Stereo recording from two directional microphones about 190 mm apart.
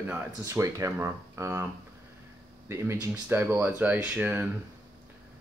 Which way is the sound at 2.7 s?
15° right (ahead or behind).